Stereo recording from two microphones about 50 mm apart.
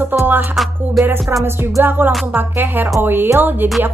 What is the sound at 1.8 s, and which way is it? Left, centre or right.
Speech, right.